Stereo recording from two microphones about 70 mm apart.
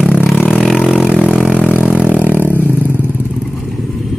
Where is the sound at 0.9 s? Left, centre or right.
Centre.